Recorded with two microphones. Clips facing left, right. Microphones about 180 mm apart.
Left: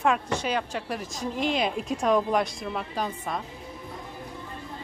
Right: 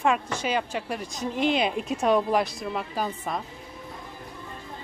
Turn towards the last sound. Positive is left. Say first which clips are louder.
# right 1 dB
turn(degrees=-5)  # may be behind; listen again after turning